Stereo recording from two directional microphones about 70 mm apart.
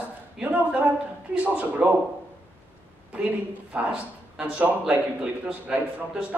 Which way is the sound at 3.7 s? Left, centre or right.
Centre.